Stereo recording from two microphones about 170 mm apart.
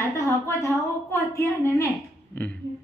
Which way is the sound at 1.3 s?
20° left (ahead or behind).